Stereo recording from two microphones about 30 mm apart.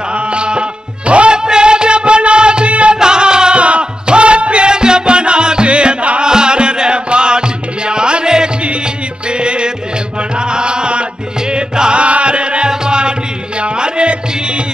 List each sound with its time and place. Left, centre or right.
0.3 s music: right
1.3 s music: right
3.0 s music: right
12.0 s music: right